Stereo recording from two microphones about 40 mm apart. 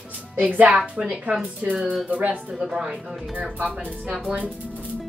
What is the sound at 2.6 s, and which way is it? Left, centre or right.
Speech, right.